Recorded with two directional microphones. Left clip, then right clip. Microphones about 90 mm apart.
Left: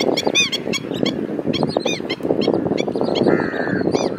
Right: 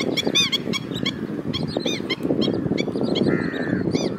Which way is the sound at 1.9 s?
5° left (ahead or behind).